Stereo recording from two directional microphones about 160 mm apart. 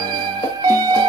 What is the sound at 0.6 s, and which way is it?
Music, 25° right (ahead or behind).